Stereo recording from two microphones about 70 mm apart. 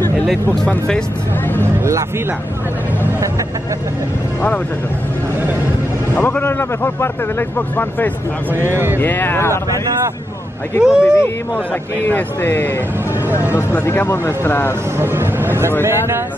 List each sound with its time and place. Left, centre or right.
6.1 s speech: left
8.7 s speech: right
9.0 s speech: left
10.8 s speech: centre
12.1 s speech: left
13.9 s speech: left
15.0 s speech: right